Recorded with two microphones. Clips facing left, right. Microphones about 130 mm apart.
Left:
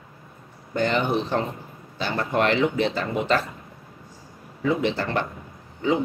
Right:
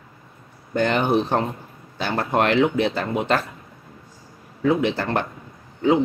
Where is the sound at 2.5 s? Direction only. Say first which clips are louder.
Right 3 dB; 55° right (ahead or behind).